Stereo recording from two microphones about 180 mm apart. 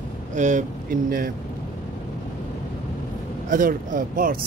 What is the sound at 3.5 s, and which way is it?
Speech, 50° right (ahead or behind).